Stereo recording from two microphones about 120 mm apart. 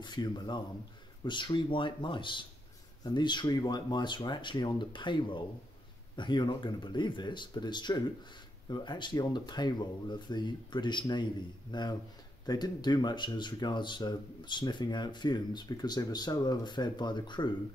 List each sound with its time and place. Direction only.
0.0 s speech: 40° left (ahead or behind)